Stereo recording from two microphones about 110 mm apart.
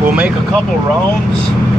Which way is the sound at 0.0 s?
15° right (ahead or behind).